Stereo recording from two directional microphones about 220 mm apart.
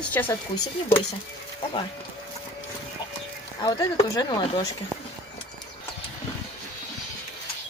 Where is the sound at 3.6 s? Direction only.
20° left (ahead or behind).